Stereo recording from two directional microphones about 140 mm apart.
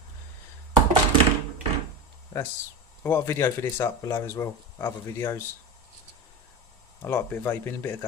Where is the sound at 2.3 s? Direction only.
25° left (ahead or behind).